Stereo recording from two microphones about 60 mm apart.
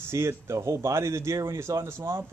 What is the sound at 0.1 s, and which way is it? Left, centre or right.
Speech, right.